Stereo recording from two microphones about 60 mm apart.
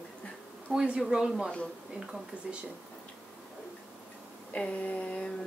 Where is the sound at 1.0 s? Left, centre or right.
Centre.